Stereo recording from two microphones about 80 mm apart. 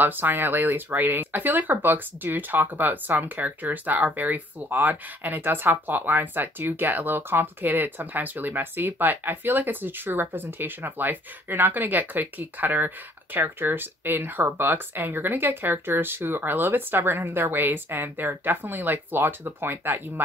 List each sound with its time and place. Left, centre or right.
0.0 s speech: right